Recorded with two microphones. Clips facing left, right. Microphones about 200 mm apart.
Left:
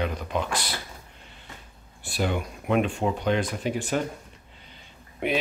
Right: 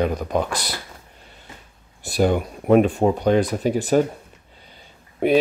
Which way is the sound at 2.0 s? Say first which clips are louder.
Right 8 dB; 40° right (ahead or behind).